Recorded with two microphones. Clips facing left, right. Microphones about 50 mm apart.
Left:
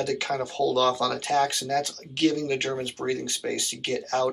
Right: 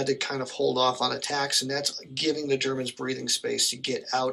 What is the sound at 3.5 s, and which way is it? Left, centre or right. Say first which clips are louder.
Speech: left 1 dB; left.